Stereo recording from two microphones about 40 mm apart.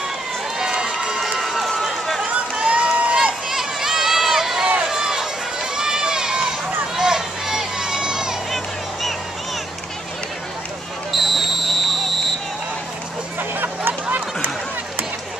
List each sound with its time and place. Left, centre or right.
0.6 s run: centre
1.4 s run: centre
2.2 s run: right
3.4 s run: centre
11.1 s a sound: centre
13.4 s a sound: right